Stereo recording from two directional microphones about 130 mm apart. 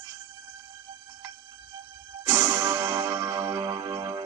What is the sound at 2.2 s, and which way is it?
Music, 35° right (ahead or behind).